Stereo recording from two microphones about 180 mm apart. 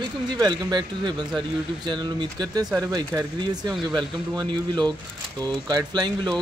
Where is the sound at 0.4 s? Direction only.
25° right (ahead or behind).